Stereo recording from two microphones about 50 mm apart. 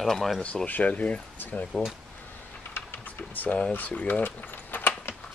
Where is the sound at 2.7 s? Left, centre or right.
Left.